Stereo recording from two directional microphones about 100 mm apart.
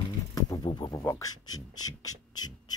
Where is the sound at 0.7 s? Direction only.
45° left (ahead or behind).